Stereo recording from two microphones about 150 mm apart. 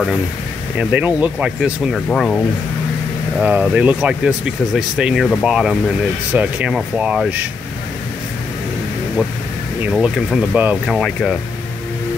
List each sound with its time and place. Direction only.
0.7 s speech: 10° right (ahead or behind)
2.0 s speech: 5° left (ahead or behind)
3.3 s speech: 5° right (ahead or behind)
9.9 s speech: 5° right (ahead or behind)